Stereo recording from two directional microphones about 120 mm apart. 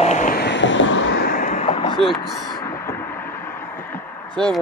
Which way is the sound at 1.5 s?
60° left (ahead or behind).